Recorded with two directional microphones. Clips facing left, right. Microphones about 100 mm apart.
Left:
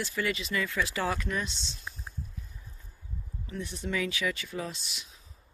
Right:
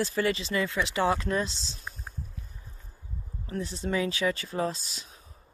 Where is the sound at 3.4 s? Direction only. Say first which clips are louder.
Right 4 dB; 35° right (ahead or behind).